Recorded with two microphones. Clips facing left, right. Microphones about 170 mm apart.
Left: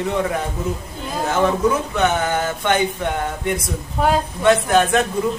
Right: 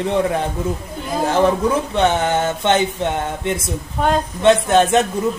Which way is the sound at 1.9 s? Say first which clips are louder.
Right 2 dB; 30° right (ahead or behind).